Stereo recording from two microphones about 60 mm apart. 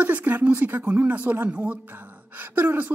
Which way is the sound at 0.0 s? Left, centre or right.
Right.